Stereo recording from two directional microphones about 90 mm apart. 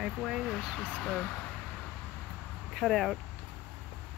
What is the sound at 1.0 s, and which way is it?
Speech, 5° left (ahead or behind).